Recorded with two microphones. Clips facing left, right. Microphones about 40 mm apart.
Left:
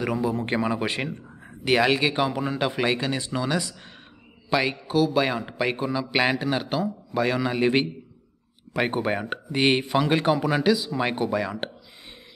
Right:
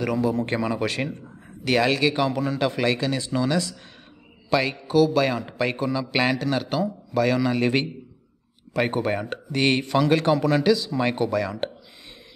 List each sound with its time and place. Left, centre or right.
0.0 s a man's voice: centre